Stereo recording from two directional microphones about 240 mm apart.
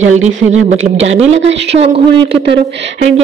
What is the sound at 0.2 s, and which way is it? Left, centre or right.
A woman's voice, right.